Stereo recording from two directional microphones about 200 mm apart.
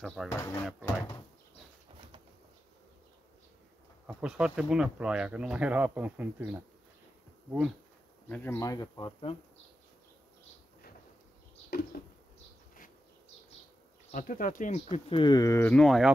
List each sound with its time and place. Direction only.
0.0 s speech: centre (ahead or behind)
0.3 s speech: 15° left (ahead or behind)
4.2 s speech: 5° right (ahead or behind)
8.3 s speech: 10° left (ahead or behind)
12.0 s a sound: 50° left (ahead or behind)
14.1 s speech: 40° left (ahead or behind); by 16.1 s centre (ahead or behind)